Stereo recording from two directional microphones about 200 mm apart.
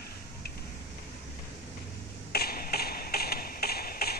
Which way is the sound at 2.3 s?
50° left (ahead or behind).